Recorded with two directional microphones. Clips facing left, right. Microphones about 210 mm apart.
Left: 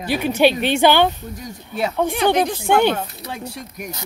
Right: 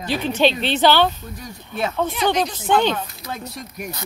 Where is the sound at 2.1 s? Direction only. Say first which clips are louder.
Left 3 dB; 55° left (ahead or behind).